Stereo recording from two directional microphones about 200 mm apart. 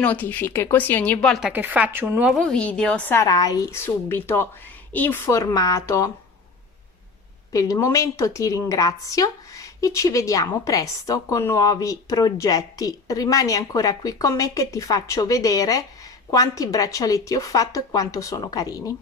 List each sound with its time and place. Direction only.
0.0 s a woman's voice: 5° left (ahead or behind); by 2.3 s 10° right (ahead or behind)
2.3 s speech: 5° left (ahead or behind)
3.1 s a woman's voice: 15° left (ahead or behind)
7.5 s a woman's voice: 15° left (ahead or behind)